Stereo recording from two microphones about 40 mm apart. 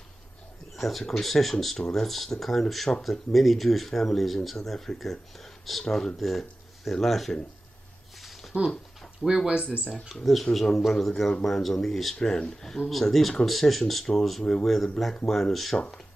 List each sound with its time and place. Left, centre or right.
0.7 s speech: centre
8.2 s a sound: centre
9.2 s speech: centre
9.8 s speech: centre
12.2 s speech: centre
12.9 s speech: centre